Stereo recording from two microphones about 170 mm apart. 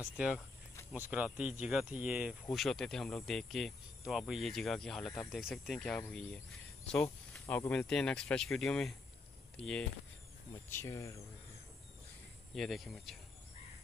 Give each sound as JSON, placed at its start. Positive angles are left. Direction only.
{"t": 0.9, "sound": "speech", "side_deg": -10}
{"t": 7.4, "sound": "speech", "side_deg": 15}
{"t": 10.7, "sound": "speech", "side_deg": 15}
{"t": 12.5, "sound": "speech", "side_deg": 0}